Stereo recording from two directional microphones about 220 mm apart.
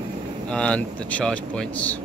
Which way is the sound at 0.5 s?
5° left (ahead or behind).